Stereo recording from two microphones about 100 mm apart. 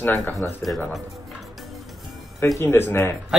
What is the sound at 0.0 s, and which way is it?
Speech, 20° left (ahead or behind).